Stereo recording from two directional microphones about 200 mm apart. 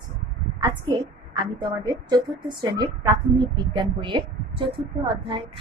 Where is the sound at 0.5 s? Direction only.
20° right (ahead or behind).